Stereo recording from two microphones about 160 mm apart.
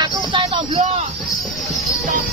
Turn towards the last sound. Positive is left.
turn(degrees=-30)  # may be behind; listen again after turning